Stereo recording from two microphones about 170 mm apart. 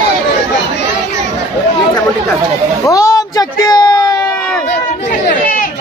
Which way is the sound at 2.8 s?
20° left (ahead or behind).